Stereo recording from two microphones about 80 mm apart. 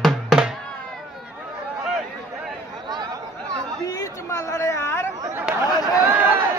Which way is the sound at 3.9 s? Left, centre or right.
Left.